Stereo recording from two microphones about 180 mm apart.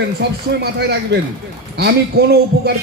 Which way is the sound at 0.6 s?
60° right (ahead or behind).